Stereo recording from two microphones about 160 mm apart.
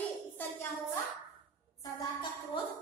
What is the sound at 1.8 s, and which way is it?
Music, 25° left (ahead or behind).